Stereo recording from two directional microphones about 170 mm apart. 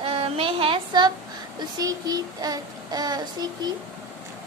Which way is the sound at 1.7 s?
20° right (ahead or behind).